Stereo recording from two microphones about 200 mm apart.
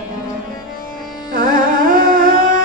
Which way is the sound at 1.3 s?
45° right (ahead or behind).